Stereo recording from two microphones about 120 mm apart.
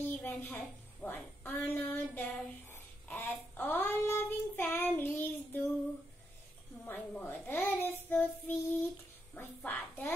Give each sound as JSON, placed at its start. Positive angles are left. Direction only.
{"t": 0.0, "sound": "a sound", "side_deg": 15}
{"t": 1.0, "sound": "speech", "side_deg": 15}
{"t": 6.8, "sound": "a child's voice", "side_deg": 15}